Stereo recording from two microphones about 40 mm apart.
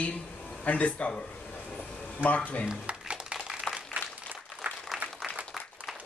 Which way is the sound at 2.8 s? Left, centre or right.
Right.